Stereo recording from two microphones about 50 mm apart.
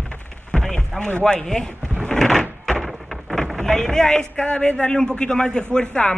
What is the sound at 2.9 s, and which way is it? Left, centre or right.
Rain, centre.